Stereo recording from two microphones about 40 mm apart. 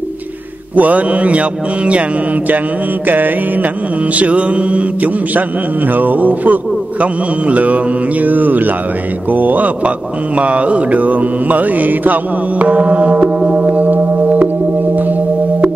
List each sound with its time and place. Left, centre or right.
0.7 s mantra: right
3.1 s mantra: right
4.1 s mantra: right
5.9 s mantra: right
9.8 s mantra: right
13.5 s gong: right